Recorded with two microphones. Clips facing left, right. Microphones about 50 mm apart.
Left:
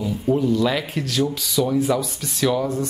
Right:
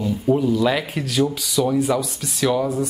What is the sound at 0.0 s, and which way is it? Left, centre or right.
A woman's voice, centre.